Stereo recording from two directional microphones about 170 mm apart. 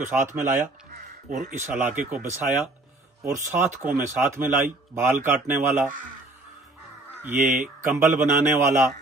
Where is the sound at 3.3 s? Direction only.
15° right (ahead or behind).